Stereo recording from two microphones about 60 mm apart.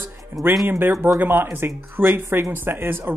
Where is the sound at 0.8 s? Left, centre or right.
Right.